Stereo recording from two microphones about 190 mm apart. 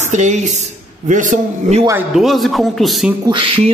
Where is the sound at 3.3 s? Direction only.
25° right (ahead or behind).